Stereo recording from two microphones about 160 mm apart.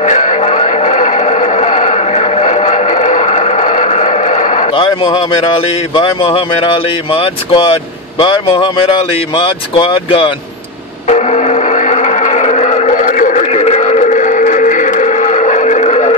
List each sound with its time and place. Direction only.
0.0 s music: 50° left (ahead or behind)
4.7 s a man's voice: 30° left (ahead or behind)
11.1 s music: 45° left (ahead or behind)